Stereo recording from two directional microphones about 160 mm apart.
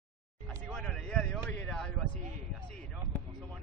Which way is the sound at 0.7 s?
5° left (ahead or behind).